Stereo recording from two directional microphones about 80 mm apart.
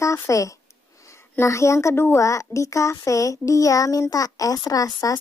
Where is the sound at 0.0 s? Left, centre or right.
Left.